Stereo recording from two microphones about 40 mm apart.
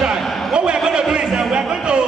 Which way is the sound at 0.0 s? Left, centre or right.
Right.